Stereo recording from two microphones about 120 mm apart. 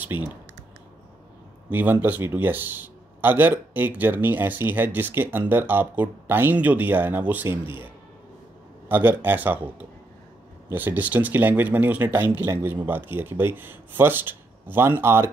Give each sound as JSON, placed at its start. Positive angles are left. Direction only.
{"t": 0.0, "sound": "speech", "side_deg": -15}
{"t": 1.7, "sound": "speech", "side_deg": -15}
{"t": 10.7, "sound": "speech", "side_deg": -15}